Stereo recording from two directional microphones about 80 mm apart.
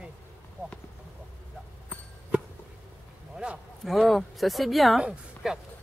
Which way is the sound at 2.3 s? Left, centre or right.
Centre.